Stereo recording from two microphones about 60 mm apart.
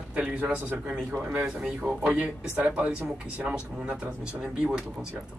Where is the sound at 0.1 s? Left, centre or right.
Right.